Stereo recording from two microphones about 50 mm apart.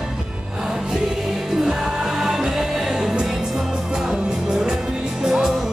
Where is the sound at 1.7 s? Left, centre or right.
Centre.